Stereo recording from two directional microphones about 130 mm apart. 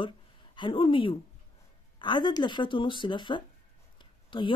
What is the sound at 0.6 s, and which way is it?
Speech, 40° left (ahead or behind).